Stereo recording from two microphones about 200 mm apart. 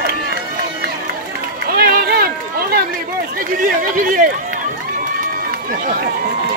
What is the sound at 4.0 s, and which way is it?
Speech, 40° right (ahead or behind).